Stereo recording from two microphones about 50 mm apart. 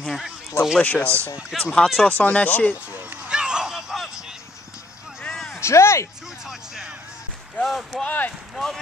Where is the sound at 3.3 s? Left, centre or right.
Centre.